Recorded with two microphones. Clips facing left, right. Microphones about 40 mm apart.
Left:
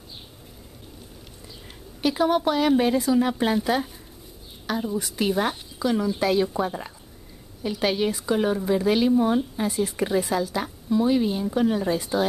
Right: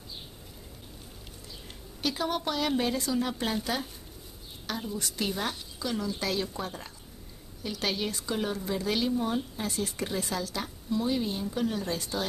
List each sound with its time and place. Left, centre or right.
2.0 s a woman's voice: centre
9.7 s a woman's voice: centre
9.9 s a woman's voice: centre